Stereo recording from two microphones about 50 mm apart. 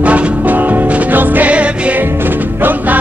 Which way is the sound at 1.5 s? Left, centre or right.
Right.